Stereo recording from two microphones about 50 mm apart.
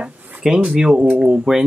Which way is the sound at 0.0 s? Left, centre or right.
Right.